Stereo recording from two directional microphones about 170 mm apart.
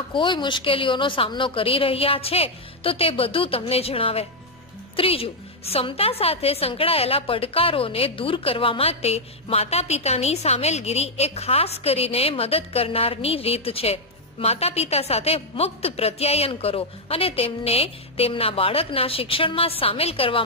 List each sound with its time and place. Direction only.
0.1 s a woman's voice: 30° left (ahead or behind)